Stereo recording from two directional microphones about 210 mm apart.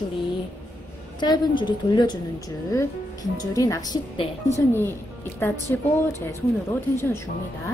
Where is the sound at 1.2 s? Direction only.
20° left (ahead or behind).